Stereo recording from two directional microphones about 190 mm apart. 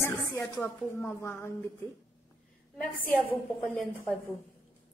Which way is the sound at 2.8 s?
10° left (ahead or behind).